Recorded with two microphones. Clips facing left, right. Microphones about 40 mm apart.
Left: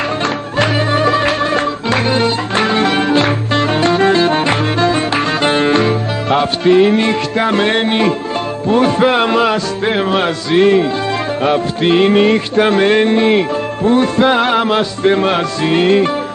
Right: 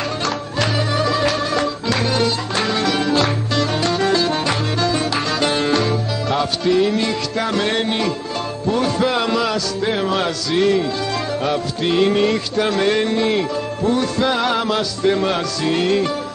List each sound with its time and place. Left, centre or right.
0.6 s music: left